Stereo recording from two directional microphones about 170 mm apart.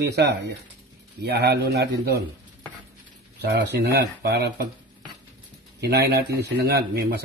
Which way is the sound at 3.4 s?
70° right (ahead or behind).